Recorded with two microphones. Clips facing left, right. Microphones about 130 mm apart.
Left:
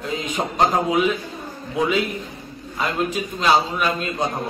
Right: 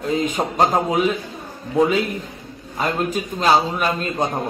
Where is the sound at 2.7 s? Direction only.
40° right (ahead or behind).